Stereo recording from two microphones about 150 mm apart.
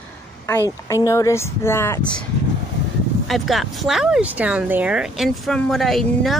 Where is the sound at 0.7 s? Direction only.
20° left (ahead or behind).